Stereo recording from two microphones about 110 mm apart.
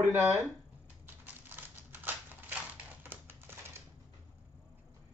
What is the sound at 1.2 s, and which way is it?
Typewriter, 15° right (ahead or behind).